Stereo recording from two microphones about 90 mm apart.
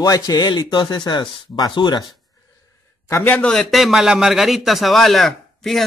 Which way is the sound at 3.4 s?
10° left (ahead or behind).